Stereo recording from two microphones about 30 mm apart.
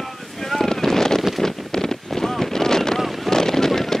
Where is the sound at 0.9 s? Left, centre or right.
Centre.